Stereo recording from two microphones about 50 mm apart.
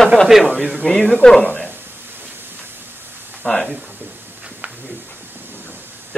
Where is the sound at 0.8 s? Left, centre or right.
Left.